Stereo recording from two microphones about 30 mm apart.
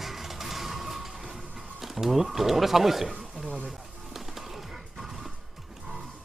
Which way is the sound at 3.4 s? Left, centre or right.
Right.